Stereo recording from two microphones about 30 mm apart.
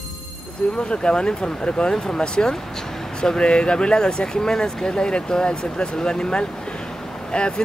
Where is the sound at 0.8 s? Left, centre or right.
Left.